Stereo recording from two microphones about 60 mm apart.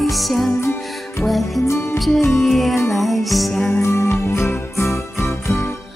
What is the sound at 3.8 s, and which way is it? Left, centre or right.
Music, left.